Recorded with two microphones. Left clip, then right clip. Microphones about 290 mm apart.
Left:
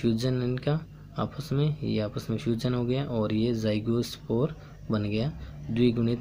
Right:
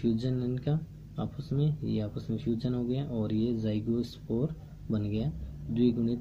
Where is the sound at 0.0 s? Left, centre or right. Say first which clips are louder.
Left 4 dB; centre.